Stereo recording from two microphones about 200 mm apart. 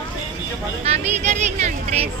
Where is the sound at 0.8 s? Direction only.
35° right (ahead or behind).